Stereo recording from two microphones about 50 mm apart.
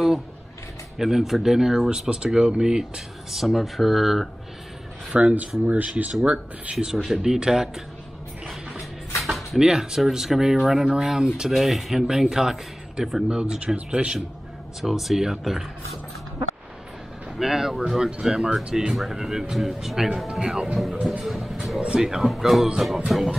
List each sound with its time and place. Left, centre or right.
0.9 s speech: centre
1.9 s speech: centre
5.1 s speech: right
7.1 s speech: centre
9.2 s a sound: centre
9.6 s speech: centre
11.5 s speech: centre
13.3 s speech: centre
14.8 s speech: centre
17.4 s speech: centre
18.9 s speech: centre
21.7 s speech: right
22.0 s speech: centre